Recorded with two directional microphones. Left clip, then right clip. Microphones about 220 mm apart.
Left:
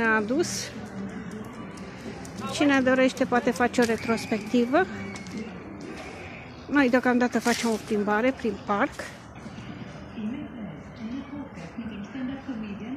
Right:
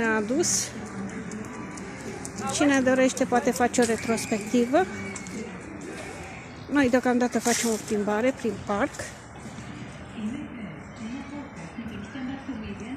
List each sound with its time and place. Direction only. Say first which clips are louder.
0.0 s a woman's voice: left 1 dB; 5° right (ahead or behind)
2.5 s speech: even; centre (ahead or behind)
6.7 s speech: left 1 dB; centre (ahead or behind)